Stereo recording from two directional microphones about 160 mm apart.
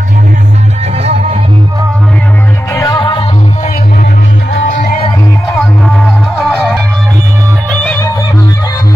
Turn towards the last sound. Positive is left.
turn(degrees=10)  # may be behind; listen again after turning